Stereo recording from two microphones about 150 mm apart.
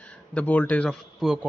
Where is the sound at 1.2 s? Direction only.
5° right (ahead or behind).